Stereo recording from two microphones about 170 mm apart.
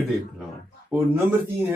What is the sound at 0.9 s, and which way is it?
Speech, 15° right (ahead or behind).